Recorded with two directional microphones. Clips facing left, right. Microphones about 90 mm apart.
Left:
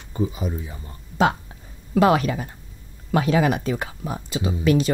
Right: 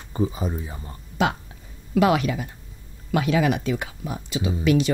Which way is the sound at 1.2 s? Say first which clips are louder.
Left 3 dB; 35° left (ahead or behind).